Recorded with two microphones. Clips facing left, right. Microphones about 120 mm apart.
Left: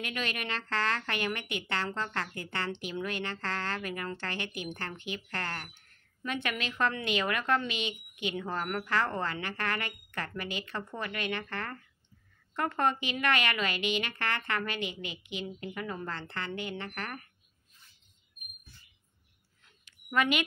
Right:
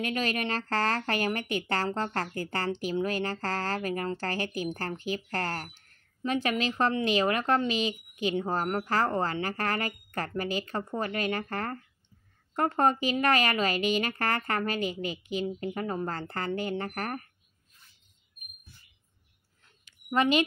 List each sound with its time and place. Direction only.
0.0 s speech: 35° right (ahead or behind)
20.1 s speech: 30° right (ahead or behind)